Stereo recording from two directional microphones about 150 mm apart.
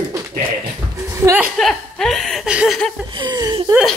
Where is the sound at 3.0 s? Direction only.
30° right (ahead or behind).